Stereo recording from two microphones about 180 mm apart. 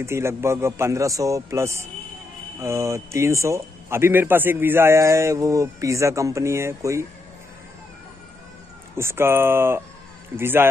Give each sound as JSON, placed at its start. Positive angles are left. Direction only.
{"t": 0.0, "sound": "a man's voice", "side_deg": -15}
{"t": 8.9, "sound": "a man's voice", "side_deg": -15}